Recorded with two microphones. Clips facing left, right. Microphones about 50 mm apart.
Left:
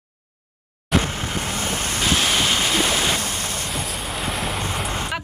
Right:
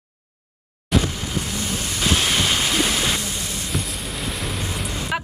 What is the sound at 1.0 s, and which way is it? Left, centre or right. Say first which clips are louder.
Vehicle: left 1 dB; left.